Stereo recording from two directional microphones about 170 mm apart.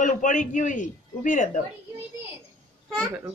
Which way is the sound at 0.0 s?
50° left (ahead or behind).